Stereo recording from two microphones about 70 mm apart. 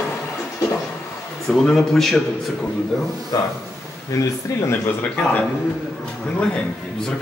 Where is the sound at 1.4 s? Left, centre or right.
Centre.